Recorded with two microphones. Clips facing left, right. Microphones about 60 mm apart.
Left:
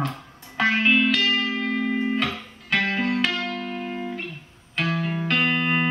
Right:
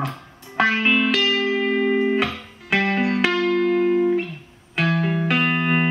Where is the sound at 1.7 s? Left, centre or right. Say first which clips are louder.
Right 5 dB; right.